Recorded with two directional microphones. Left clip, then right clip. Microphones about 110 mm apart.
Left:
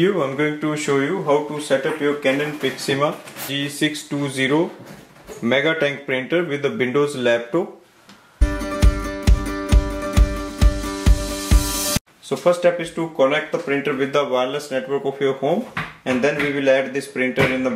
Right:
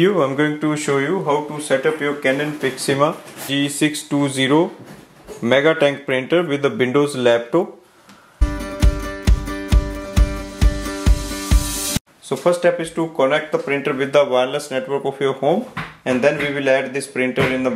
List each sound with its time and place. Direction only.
0.0 s speech: 40° right (ahead or behind)
2.9 s speech: 40° right (ahead or behind)
8.4 s music: centre (ahead or behind)
12.3 s speech: 35° right (ahead or behind)